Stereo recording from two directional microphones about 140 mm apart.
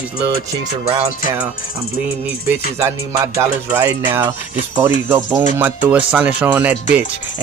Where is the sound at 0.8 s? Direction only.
45° right (ahead or behind).